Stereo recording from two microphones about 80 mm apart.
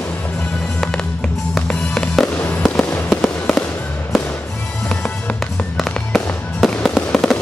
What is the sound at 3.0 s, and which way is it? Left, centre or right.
Fireworks, centre.